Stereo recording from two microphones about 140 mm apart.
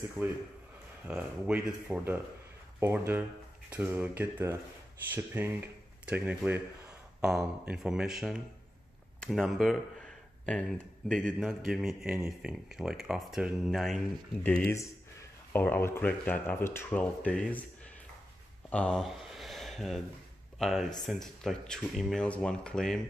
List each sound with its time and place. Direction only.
0.2 s speech: 15° right (ahead or behind); by 17.6 s 10° left (ahead or behind)
18.7 s a sound: 5° left (ahead or behind)
20.5 s speech: centre (ahead or behind)